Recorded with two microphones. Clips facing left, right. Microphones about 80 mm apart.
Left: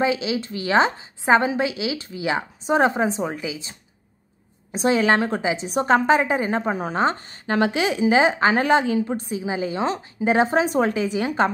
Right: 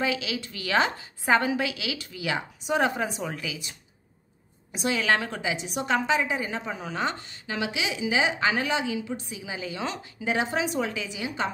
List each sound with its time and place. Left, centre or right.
0.0 s a woman's voice: left
4.7 s a woman's voice: left